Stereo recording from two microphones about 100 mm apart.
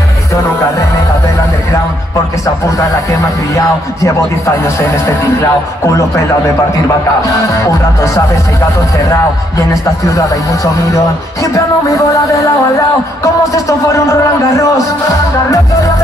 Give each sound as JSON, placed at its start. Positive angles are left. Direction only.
{"t": 4.6, "sound": "speech", "side_deg": 25}
{"t": 7.5, "sound": "music", "side_deg": 30}
{"t": 11.5, "sound": "music", "side_deg": 35}